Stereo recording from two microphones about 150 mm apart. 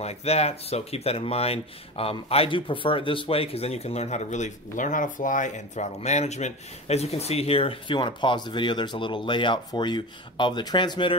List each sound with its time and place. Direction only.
0.0 s speech: 45° left (ahead or behind)